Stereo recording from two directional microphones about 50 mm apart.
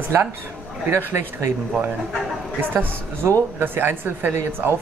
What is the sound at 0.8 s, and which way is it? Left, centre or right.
Speech, right.